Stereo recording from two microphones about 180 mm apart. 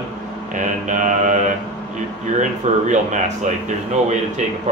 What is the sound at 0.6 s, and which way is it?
Mantra, 45° right (ahead or behind).